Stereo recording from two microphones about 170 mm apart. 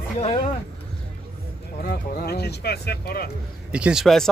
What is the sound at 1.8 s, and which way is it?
Speech, 65° left (ahead or behind).